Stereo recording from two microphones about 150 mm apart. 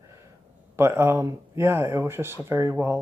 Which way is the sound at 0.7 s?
15° right (ahead or behind).